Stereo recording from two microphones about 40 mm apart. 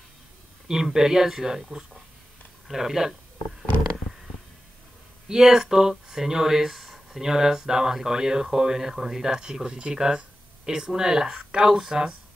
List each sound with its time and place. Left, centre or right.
0.7 s speech: centre
5.3 s speech: centre